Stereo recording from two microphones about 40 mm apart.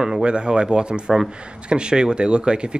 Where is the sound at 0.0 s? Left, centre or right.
Right.